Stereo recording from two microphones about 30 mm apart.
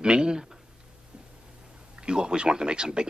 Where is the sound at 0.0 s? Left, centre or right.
Right.